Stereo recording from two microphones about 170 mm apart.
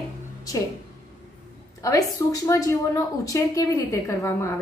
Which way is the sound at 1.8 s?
20° left (ahead or behind).